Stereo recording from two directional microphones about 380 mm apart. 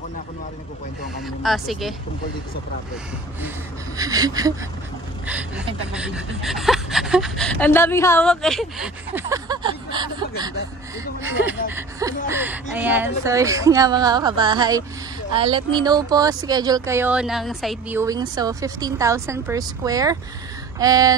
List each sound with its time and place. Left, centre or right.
1.4 s speech: centre
3.4 s speech: centre
5.9 s speech: centre
11.7 s speech: centre